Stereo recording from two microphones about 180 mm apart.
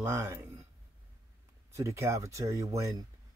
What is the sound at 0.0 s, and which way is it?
Speech, 15° right (ahead or behind).